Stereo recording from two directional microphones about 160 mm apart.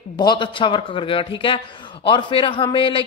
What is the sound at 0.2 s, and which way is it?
A man's voice, 30° left (ahead or behind).